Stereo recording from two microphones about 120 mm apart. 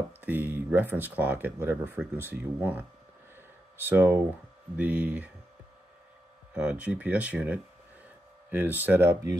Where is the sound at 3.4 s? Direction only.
15° right (ahead or behind).